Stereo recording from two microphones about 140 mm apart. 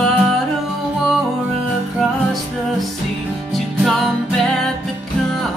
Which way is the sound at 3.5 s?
Centre (ahead or behind).